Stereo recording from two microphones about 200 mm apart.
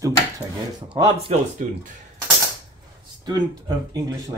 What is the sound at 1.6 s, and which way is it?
Speech, 40° right (ahead or behind).